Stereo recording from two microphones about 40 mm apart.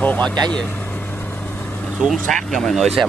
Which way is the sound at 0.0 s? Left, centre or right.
Left.